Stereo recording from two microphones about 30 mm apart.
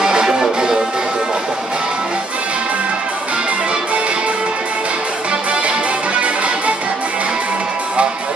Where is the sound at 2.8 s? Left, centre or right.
Right.